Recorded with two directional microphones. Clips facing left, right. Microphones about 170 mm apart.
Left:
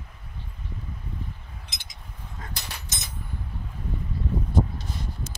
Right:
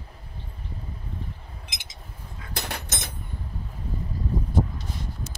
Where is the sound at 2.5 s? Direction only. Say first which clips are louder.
Right 11 dB; 55° right (ahead or behind).